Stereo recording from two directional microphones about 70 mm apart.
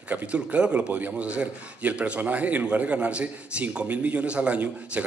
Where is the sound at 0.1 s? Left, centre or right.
Right.